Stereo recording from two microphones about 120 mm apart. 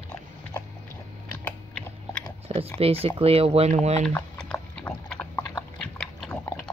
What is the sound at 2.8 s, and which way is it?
Speech, 55° right (ahead or behind).